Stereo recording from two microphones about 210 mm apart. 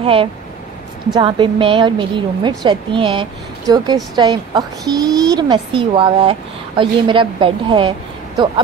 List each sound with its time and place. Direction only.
0.0 s a woman's voice: 25° right (ahead or behind)